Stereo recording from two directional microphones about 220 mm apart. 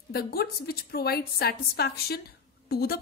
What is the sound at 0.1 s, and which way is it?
A woman's voice, 45° left (ahead or behind).